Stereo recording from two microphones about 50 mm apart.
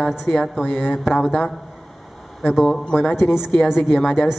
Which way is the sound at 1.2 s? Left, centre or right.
Centre.